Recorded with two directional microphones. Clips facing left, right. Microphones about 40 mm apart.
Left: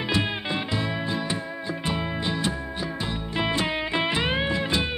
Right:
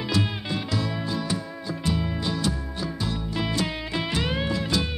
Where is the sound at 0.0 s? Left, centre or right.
Left.